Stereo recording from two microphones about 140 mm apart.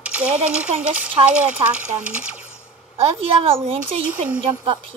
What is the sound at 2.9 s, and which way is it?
Child singing, 40° right (ahead or behind).